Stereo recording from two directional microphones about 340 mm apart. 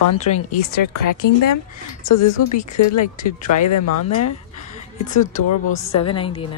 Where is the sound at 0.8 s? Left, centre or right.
Left.